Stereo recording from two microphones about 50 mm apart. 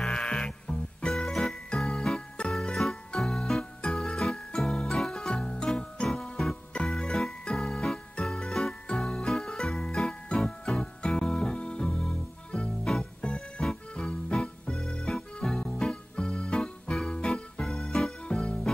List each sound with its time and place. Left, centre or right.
0.0 s music: centre
1.1 s music: centre
2.5 s music: centre
15.0 s music: centre
18.3 s music: centre